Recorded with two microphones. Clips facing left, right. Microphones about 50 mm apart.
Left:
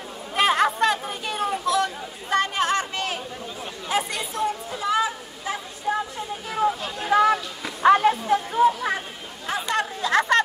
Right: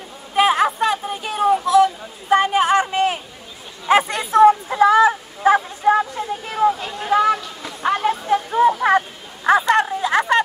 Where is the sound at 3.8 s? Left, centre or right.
Right.